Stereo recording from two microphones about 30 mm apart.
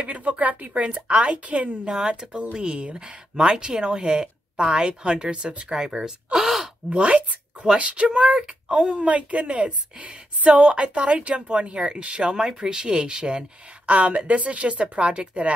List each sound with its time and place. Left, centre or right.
0.0 s a sound: right
1.0 s speech: right
1.9 s speech: right
3.3 s speech: right
5.8 s speech: right
6.3 s gasp: centre
6.9 s speech: right
8.5 s speech: right
9.0 s speech: right
13.8 s speech: right